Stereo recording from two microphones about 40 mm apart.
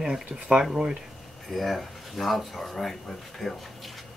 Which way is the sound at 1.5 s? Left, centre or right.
Centre.